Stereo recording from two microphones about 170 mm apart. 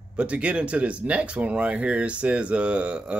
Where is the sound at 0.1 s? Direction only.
5° right (ahead or behind).